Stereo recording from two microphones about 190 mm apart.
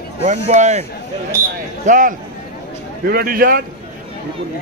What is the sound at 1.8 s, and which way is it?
A man's voice, 45° right (ahead or behind).